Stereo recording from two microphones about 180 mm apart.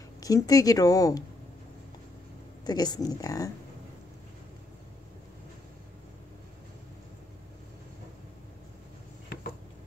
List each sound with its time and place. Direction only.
0.2 s speech: 20° left (ahead or behind)
2.6 s speech: 20° left (ahead or behind)